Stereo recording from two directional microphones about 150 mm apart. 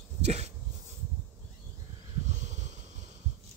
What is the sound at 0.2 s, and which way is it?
Dog, 45° right (ahead or behind).